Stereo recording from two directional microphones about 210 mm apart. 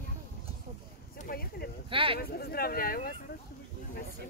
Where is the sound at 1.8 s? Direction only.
25° right (ahead or behind).